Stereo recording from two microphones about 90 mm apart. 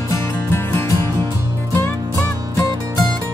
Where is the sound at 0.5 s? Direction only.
30° left (ahead or behind).